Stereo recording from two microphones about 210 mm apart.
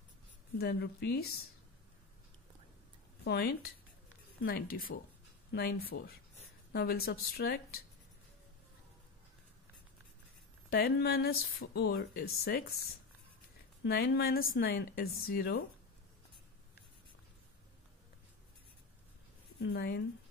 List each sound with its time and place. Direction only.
0.6 s speech: 50° left (ahead or behind)
3.3 s a woman's voice: 50° left (ahead or behind)
10.7 s speech: 50° left (ahead or behind)
13.8 s speech: 50° left (ahead or behind)
19.6 s speech: 50° left (ahead or behind)